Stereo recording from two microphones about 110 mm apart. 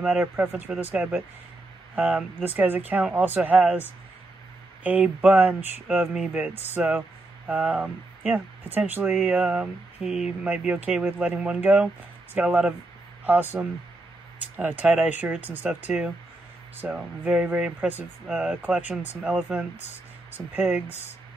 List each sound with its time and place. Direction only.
0.0 s speech: 15° right (ahead or behind)
4.8 s speech: 10° right (ahead or behind)